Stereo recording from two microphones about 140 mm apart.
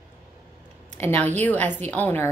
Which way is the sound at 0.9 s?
15° left (ahead or behind).